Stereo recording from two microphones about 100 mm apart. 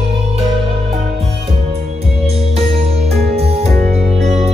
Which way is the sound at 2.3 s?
90° right.